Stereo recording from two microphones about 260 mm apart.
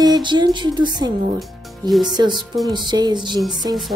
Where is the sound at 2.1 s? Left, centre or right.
Centre.